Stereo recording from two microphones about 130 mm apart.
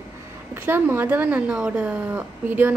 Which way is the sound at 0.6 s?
15° right (ahead or behind).